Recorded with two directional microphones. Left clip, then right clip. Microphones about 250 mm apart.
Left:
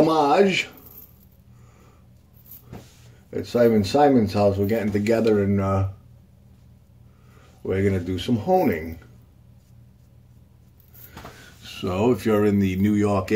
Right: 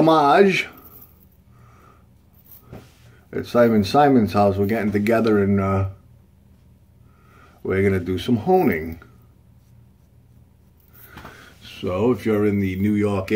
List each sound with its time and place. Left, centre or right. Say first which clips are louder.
0.0 s speech: right 3 dB; centre
3.3 s speech: right 2 dB; centre
7.6 s speech: right 3 dB; centre
11.6 s speech: right 1 dB; centre
12.9 s speech: even; centre